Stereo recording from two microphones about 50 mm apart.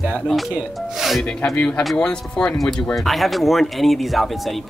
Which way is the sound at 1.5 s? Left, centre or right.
Left.